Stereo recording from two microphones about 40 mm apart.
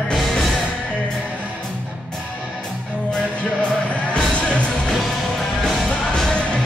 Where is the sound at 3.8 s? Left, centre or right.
Left.